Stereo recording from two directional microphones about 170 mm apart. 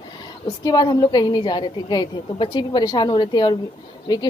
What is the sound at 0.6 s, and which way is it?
A woman's voice, 25° left (ahead or behind).